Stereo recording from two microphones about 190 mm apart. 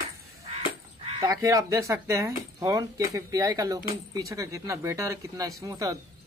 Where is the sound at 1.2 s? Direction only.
20° right (ahead or behind).